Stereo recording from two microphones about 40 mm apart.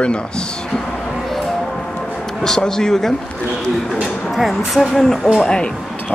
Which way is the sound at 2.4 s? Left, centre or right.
Centre.